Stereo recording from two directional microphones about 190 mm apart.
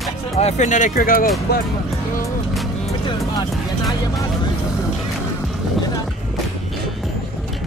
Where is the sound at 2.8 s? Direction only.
25° left (ahead or behind).